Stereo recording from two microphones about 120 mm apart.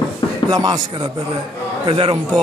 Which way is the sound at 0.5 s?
30° right (ahead or behind).